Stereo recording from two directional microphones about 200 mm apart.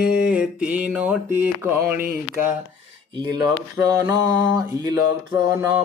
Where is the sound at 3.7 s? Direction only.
15° right (ahead or behind).